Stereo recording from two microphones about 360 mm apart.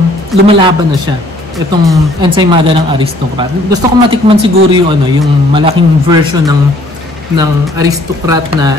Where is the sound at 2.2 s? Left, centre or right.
Centre.